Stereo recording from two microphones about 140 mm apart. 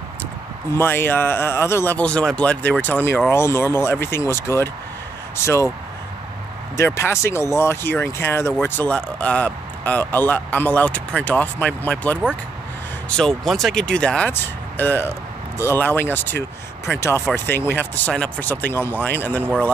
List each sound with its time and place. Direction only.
0.7 s speech: 15° left (ahead or behind)
6.8 s speech: 20° left (ahead or behind)